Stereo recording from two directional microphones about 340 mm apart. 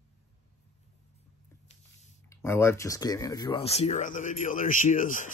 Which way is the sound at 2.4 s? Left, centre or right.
Centre.